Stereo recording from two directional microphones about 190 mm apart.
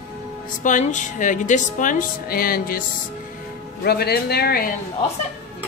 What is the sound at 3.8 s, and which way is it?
Speech, 55° left (ahead or behind).